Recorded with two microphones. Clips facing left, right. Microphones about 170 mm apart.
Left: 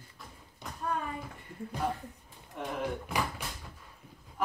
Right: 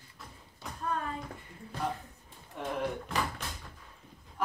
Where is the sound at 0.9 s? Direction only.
10° left (ahead or behind).